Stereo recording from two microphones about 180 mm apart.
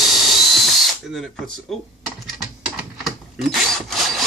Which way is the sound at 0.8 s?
Centre (ahead or behind).